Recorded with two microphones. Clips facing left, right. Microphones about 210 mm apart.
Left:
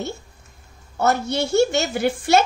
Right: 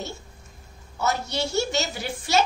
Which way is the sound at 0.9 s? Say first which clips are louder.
Left 6 dB; 55° left (ahead or behind).